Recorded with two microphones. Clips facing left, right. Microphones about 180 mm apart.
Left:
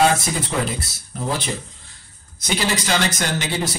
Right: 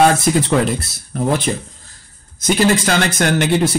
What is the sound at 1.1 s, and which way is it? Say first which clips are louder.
Speech: right 8 dB; 65° right (ahead or behind).